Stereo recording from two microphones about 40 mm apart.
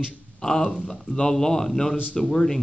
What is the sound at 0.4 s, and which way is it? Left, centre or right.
A man's voice, centre.